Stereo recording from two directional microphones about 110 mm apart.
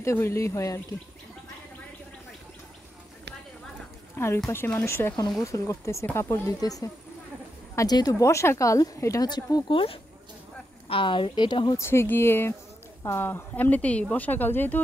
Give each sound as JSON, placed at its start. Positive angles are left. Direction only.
{"t": 0.0, "sound": "speech", "side_deg": 25}
{"t": 4.8, "sound": "speech", "side_deg": 25}
{"t": 9.7, "sound": "speech", "side_deg": 50}
{"t": 11.7, "sound": "speech", "side_deg": 25}